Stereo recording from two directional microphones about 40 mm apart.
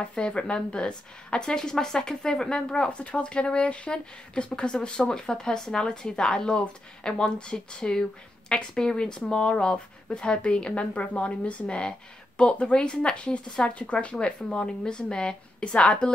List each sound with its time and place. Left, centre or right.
0.0 s a woman's voice: left